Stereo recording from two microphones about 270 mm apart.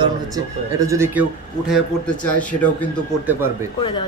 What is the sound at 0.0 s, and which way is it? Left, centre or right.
Speech, centre.